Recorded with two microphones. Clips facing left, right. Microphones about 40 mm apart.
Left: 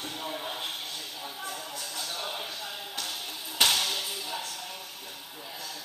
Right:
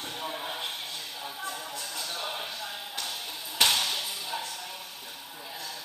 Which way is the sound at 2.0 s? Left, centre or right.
Right.